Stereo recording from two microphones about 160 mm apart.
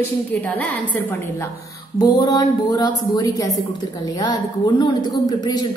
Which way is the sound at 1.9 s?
25° left (ahead or behind).